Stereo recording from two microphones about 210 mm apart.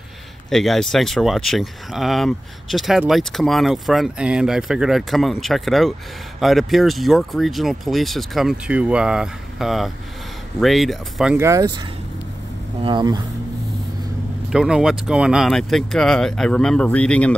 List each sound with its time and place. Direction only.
0.5 s speech: centre (ahead or behind)
11.3 s speech: 15° right (ahead or behind)
12.8 s speech: 20° right (ahead or behind)
14.5 s speech: 5° right (ahead or behind)